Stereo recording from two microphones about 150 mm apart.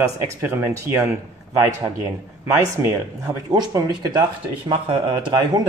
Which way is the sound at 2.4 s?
15° right (ahead or behind).